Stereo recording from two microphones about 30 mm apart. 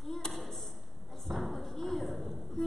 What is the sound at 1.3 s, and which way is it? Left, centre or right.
Thump, centre.